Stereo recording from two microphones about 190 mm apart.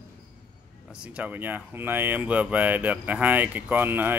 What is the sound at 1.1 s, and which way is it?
Speech, 10° right (ahead or behind).